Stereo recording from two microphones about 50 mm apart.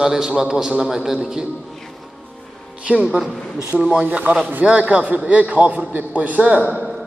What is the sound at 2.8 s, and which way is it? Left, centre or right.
A man's voice, centre.